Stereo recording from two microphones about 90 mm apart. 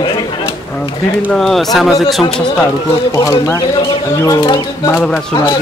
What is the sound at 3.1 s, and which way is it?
Speech, 35° left (ahead or behind).